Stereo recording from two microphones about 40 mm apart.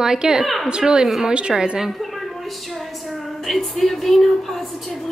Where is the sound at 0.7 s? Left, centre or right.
Centre.